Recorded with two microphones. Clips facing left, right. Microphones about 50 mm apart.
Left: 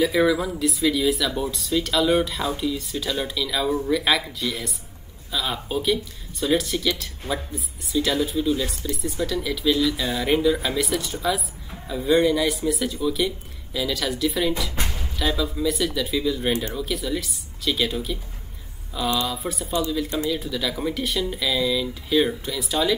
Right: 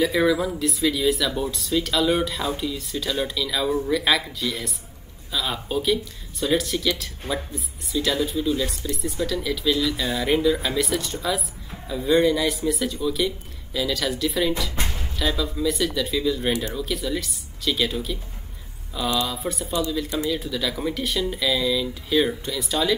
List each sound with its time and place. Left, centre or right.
0.0 s speech: centre
19.2 s speech: centre